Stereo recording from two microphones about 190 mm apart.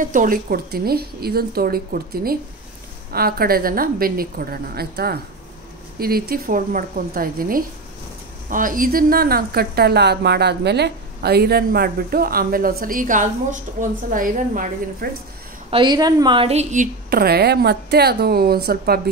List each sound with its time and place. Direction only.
0.0 s a woman's voice: 45° right (ahead or behind)
15.7 s a woman's voice: 25° right (ahead or behind); by 18.9 s 55° right (ahead or behind)